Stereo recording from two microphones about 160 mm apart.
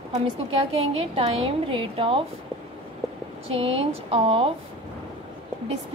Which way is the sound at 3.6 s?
40° right (ahead or behind).